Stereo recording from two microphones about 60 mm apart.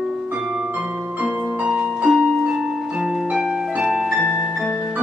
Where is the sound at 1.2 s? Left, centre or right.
Centre.